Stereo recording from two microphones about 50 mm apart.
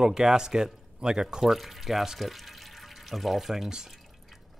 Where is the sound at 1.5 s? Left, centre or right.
Centre.